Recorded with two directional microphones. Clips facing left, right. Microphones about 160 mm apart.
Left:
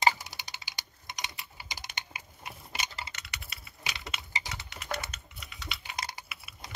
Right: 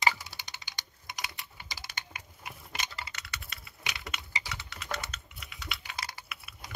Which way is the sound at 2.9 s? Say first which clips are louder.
Even; 25° left (ahead or behind).